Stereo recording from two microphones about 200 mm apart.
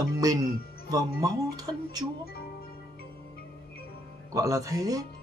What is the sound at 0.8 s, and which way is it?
Speech, 20° right (ahead or behind).